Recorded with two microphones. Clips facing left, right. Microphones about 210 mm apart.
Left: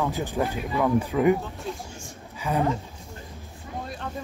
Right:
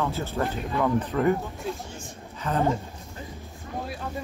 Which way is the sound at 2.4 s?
10° left (ahead or behind).